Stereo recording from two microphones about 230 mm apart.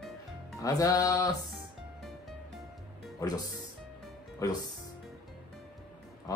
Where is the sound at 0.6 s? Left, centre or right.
Centre.